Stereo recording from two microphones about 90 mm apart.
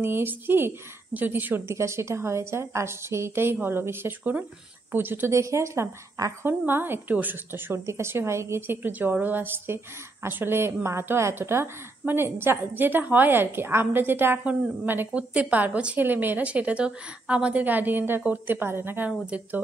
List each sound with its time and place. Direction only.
0.0 s speech: 25° right (ahead or behind)
6.4 s speech: 25° right (ahead or behind)
19.0 s speech: 15° right (ahead or behind)